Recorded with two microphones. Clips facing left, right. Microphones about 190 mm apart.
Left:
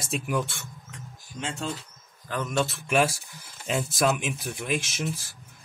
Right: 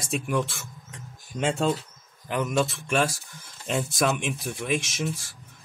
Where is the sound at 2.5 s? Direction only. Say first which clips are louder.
Left 1 dB; centre (ahead or behind).